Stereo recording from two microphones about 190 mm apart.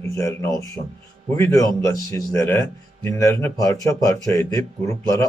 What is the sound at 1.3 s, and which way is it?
A man's voice, 15° left (ahead or behind).